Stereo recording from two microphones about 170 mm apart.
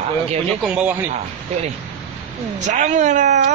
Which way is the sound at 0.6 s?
5° right (ahead or behind).